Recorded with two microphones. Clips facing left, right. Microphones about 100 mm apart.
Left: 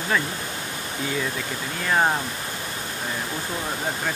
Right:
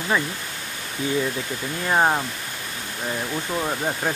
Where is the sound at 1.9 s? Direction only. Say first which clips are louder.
Right 2 dB; 15° right (ahead or behind).